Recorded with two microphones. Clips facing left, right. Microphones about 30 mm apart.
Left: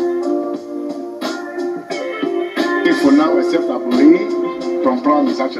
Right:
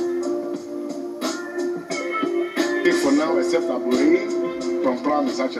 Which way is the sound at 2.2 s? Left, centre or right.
Left.